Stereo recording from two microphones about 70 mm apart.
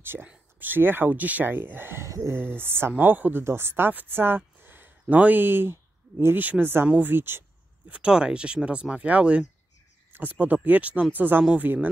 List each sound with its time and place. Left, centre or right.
0.0 s speech: right
2.0 s speech: right
2.3 s speech: right
4.6 s a sound: right
5.1 s speech: right
7.9 s speech: centre